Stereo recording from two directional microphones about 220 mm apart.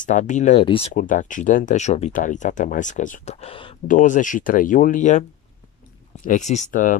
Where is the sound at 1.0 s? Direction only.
35° left (ahead or behind).